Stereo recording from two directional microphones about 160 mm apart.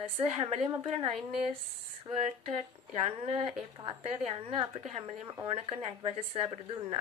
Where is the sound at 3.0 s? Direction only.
40° right (ahead or behind).